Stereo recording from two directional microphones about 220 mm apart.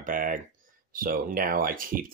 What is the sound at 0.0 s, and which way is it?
Speech, 40° right (ahead or behind).